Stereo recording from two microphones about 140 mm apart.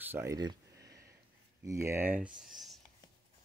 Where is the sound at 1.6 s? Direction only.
20° right (ahead or behind).